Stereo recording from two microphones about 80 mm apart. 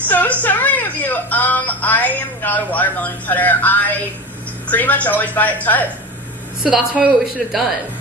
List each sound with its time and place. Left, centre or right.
0.1 s a woman's voice: left
6.6 s a woman's voice: centre